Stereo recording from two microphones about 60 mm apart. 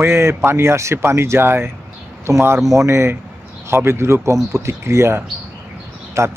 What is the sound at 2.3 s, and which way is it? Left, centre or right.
Speech, right.